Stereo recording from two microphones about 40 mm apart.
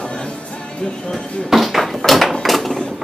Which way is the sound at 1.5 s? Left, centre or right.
Centre.